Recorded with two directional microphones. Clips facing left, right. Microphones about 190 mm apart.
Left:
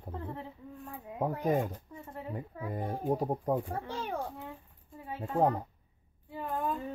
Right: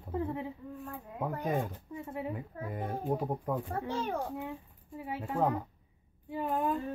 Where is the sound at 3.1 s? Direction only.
35° left (ahead or behind).